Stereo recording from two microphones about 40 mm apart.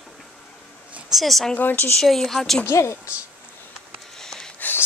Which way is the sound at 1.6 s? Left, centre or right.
Left.